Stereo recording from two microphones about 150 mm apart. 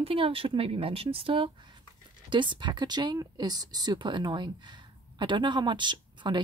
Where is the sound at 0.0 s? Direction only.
40° right (ahead or behind).